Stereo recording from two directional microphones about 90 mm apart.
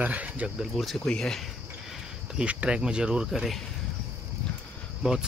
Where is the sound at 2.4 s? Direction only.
15° right (ahead or behind).